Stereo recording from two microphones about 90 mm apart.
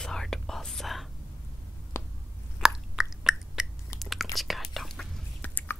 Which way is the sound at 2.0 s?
30° left (ahead or behind).